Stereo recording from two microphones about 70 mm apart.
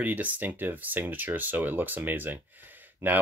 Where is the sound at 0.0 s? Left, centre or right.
Right.